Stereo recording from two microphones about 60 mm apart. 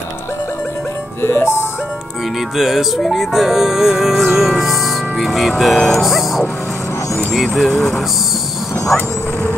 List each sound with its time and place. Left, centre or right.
1.2 s music: left
2.5 s music: centre
7.5 s music: centre